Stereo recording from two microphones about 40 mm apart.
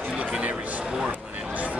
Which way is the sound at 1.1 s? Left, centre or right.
Right.